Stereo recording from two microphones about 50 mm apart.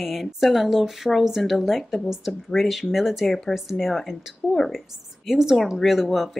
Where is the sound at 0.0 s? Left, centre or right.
Centre.